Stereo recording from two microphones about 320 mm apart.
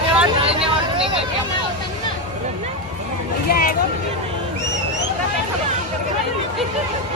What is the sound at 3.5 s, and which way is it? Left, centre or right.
Speech, left.